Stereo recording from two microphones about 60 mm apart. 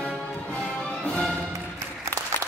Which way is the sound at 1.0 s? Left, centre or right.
Centre.